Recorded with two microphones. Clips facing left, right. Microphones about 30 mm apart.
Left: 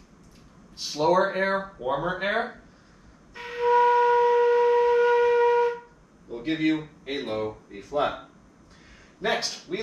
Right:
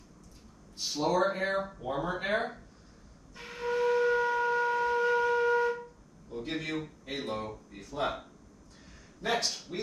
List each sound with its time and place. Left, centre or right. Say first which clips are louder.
0.7 s a man's voice: left 6 dB; left
3.3 s wind instrument: left 10 dB; left
6.3 s a man's voice: left 10 dB; left